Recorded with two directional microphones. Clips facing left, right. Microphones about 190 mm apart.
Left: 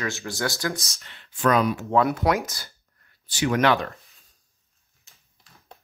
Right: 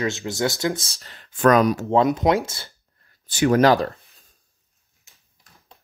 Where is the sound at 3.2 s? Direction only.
50° right (ahead or behind).